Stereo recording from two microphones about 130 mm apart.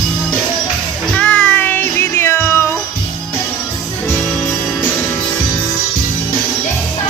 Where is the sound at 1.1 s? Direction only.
10° left (ahead or behind).